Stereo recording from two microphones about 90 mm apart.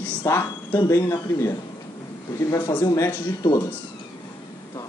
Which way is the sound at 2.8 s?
35° left (ahead or behind).